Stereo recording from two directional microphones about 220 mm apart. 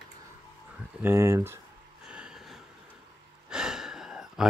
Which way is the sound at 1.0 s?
10° right (ahead or behind).